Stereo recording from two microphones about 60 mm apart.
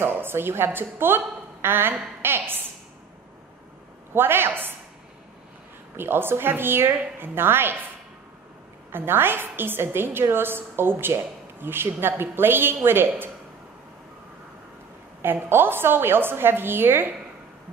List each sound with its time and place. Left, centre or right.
0.0 s a woman's voice: right
4.1 s a woman's voice: right
5.9 s a woman's voice: right
8.9 s a woman's voice: right
15.2 s a woman's voice: right